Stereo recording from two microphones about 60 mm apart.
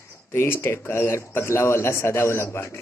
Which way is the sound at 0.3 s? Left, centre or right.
Left.